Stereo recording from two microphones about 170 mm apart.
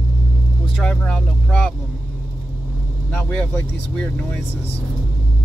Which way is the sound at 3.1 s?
10° left (ahead or behind).